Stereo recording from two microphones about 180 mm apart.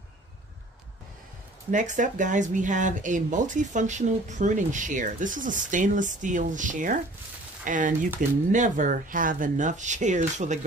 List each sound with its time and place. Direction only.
1.7 s speech: 45° right (ahead or behind)